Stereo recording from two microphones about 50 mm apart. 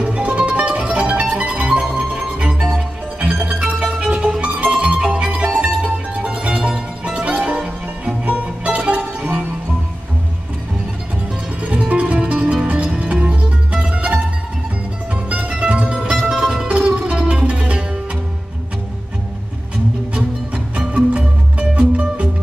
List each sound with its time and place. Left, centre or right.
0.0 s music: right
1.3 s mandolin: right
2.1 s music: centre
3.6 s music: centre
4.2 s music: right
7.2 s music: right
11.6 s music: right
15.5 s music: right
21.1 s music: right